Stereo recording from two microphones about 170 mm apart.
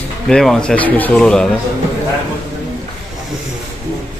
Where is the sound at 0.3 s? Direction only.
5° left (ahead or behind).